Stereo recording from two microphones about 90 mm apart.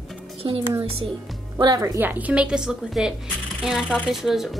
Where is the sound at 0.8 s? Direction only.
90° right.